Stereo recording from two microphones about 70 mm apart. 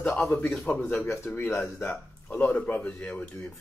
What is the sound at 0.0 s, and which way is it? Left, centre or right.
Speech, left.